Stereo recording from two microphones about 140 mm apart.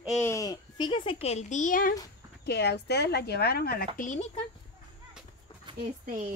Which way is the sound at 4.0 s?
55° left (ahead or behind).